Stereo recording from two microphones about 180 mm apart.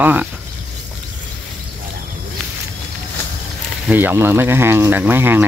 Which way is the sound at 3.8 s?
10° right (ahead or behind).